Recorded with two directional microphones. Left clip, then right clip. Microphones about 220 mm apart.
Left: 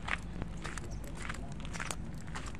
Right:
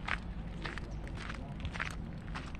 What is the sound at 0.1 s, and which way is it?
Walk, 25° left (ahead or behind).